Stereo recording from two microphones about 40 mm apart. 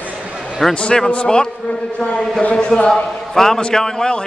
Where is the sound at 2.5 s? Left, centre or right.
Centre.